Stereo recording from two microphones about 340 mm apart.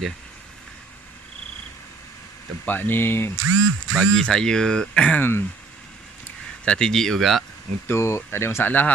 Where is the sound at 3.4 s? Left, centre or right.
Right.